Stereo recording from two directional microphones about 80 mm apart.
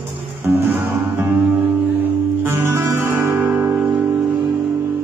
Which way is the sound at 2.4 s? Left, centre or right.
Right.